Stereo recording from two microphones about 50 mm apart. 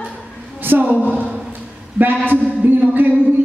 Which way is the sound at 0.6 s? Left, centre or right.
Right.